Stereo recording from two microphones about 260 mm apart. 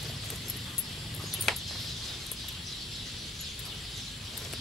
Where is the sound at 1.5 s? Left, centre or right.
Centre.